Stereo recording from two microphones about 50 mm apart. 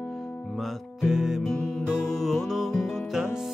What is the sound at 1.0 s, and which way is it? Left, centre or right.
Music, centre.